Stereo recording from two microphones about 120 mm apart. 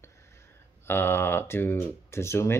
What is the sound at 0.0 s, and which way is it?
Speech, 25° left (ahead or behind).